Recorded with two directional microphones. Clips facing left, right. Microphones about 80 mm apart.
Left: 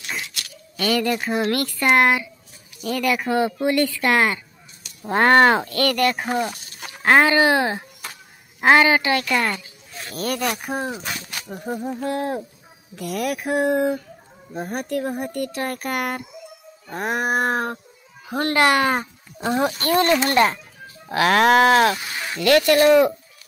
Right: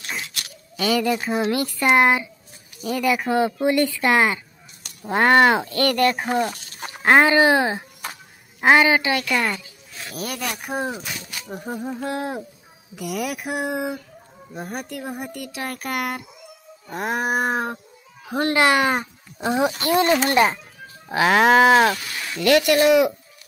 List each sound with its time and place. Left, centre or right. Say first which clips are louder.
0.7 s speech: even; centre
5.0 s speech: left 1 dB; centre
5.7 s speech: right 1 dB; right
6.2 s speech: right 1 dB; centre
7.0 s speech: right 1 dB; centre
7.7 s a sound: right 1 dB; centre
8.6 s speech: left 1 dB; centre
9.2 s a woman's voice: left 1 dB; centre
9.5 s a sound: left 1 dB; centre
10.4 s speech: left 3 dB; centre
10.9 s a sound: left 1 dB; centre
12.0 s speech: left 2 dB; centre
17.2 s speech: left 1 dB; centre